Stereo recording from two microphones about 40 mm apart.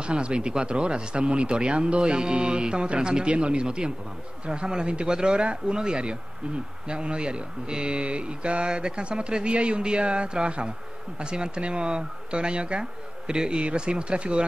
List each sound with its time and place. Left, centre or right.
0.0 s speech: right